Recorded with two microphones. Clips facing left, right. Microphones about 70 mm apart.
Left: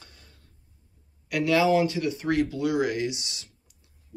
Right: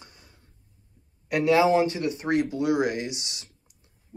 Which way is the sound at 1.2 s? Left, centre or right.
Right.